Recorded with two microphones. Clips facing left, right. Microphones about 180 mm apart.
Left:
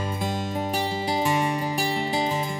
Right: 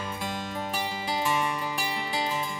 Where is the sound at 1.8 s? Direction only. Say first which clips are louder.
Left 6 dB; 30° left (ahead or behind).